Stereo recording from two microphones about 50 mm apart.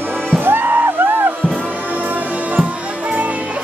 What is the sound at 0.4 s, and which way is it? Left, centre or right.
Music, right.